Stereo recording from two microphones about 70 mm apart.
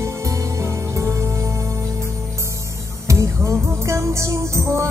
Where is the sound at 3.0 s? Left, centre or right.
Right.